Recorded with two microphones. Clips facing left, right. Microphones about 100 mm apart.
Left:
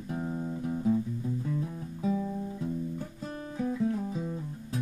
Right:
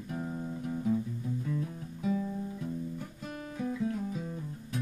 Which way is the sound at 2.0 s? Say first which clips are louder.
Left 1 dB; 25° left (ahead or behind).